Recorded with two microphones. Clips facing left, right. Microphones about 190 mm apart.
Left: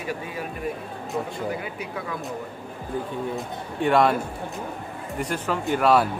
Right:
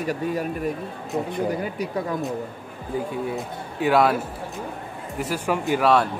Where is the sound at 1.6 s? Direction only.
40° right (ahead or behind).